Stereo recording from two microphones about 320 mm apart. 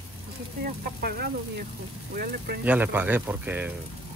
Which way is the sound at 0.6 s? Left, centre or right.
Right.